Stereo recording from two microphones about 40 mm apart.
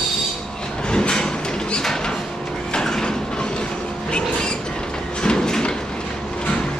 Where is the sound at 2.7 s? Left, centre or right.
Centre.